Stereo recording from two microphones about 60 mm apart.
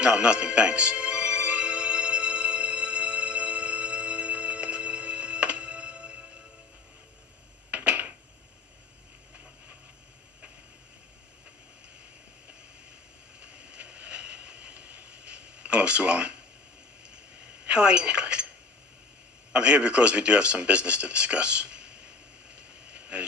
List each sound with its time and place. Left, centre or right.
0.0 s music: centre
7.7 s a sound: right
13.4 s vehicle: right
17.6 s speech: centre
19.5 s speech: centre
22.6 s vehicle: right